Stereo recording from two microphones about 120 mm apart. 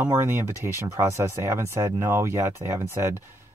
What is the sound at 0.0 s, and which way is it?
Speech, 20° right (ahead or behind).